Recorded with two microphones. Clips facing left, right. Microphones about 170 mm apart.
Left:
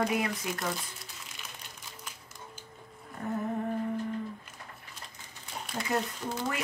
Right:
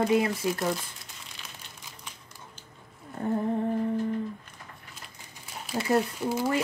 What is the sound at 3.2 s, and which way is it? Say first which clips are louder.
Humming: right 5 dB; 30° right (ahead or behind).